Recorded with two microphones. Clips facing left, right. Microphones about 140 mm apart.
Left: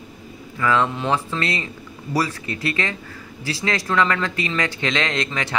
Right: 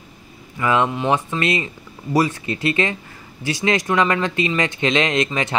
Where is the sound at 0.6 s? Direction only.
20° right (ahead or behind).